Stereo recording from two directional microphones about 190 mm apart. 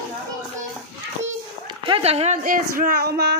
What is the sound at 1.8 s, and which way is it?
Speech, 30° right (ahead or behind).